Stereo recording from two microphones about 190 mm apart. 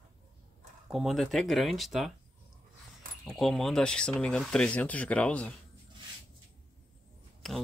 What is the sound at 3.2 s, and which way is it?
Speech, centre (ahead or behind).